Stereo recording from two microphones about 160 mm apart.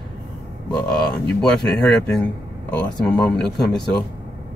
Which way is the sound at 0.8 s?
5° left (ahead or behind).